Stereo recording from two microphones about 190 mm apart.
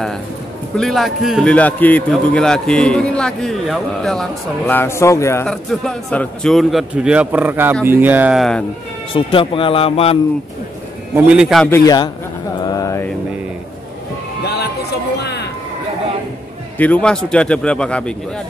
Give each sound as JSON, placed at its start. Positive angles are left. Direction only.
{"t": 0.7, "sound": "a man's voice", "side_deg": 0}
{"t": 9.1, "sound": "speech", "side_deg": 30}
{"t": 11.1, "sound": "a man's voice", "side_deg": -5}
{"t": 11.6, "sound": "a man's voice", "side_deg": 15}
{"t": 12.6, "sound": "mantra", "side_deg": 20}
{"t": 14.4, "sound": "music", "side_deg": 55}
{"t": 16.7, "sound": "a man's voice", "side_deg": 10}